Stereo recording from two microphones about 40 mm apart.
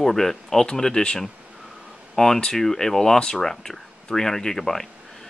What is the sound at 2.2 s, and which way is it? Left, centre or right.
Speech, centre.